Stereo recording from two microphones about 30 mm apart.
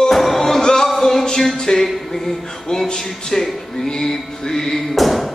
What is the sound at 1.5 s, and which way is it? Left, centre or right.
Music, left.